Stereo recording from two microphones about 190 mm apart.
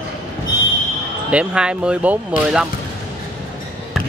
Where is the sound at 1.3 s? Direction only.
5° right (ahead or behind).